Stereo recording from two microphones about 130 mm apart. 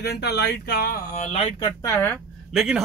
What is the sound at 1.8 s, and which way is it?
Speech, 20° left (ahead or behind).